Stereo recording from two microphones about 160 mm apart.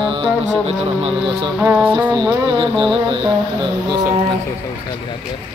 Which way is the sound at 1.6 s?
10° right (ahead or behind).